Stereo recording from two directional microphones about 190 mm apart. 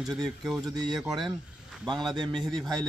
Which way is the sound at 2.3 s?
Centre (ahead or behind).